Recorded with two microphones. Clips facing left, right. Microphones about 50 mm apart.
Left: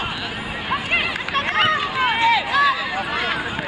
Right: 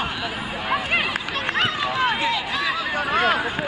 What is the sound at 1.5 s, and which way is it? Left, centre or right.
Run, centre.